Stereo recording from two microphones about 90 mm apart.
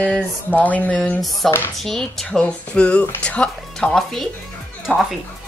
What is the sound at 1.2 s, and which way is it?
Speech, centre (ahead or behind).